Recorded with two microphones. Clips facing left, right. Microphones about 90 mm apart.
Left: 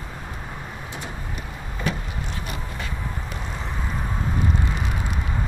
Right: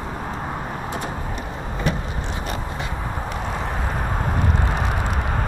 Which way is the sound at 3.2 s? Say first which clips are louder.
Right 6 dB; 55° right (ahead or behind).